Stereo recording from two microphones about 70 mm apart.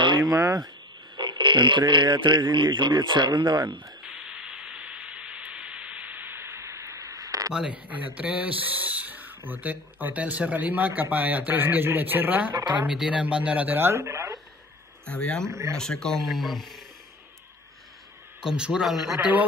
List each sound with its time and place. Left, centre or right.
0.2 s speech: right
1.1 s speech: right
4.0 s a sound: centre; by 7.5 s right
7.5 s speech: centre
12.5 s speech: right
12.8 s speech: centre
13.7 s speech: right
15.0 s speech: centre
15.4 s speech: right
15.8 s speech: centre
18.4 s speech: centre